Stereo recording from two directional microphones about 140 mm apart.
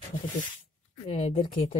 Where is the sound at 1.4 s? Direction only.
35° left (ahead or behind).